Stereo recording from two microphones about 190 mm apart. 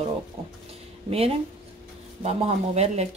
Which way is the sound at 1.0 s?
30° right (ahead or behind).